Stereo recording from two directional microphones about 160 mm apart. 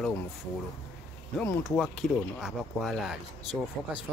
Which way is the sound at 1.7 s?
Centre (ahead or behind).